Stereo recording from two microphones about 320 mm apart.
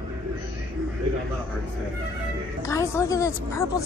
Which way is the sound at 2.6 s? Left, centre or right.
Centre.